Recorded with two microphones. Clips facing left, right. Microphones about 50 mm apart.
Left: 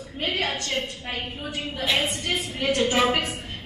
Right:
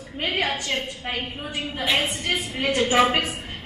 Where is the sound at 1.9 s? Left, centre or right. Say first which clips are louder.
Right 1 dB; right.